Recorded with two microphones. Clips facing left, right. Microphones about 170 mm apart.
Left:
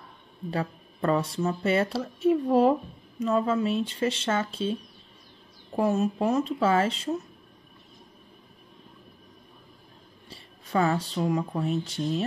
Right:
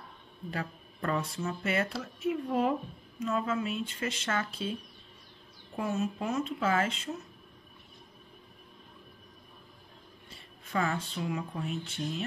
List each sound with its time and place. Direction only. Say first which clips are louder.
0.5 s speech: left 7 dB; 30° left (ahead or behind)
5.8 s speech: left 8 dB; 35° left (ahead or behind)
10.3 s music: left 6 dB; 35° left (ahead or behind)
11.1 s speech: left 8 dB; 40° left (ahead or behind)